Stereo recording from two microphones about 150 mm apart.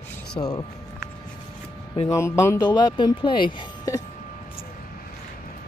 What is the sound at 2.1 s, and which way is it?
Speech, 15° left (ahead or behind).